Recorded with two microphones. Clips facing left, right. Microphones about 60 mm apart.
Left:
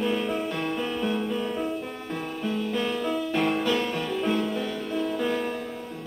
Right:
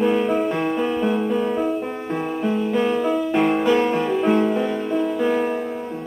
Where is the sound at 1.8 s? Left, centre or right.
Right.